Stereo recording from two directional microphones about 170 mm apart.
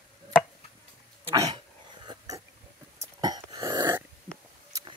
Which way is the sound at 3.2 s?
25° right (ahead or behind).